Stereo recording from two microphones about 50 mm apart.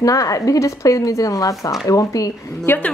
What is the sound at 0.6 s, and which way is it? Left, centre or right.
Speech, left.